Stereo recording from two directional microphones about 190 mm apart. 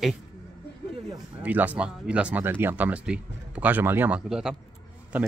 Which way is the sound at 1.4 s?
10° right (ahead or behind).